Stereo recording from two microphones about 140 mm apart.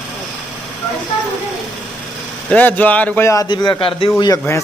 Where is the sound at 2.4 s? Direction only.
10° left (ahead or behind).